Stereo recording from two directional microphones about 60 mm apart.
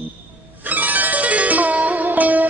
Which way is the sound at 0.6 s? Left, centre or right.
Right.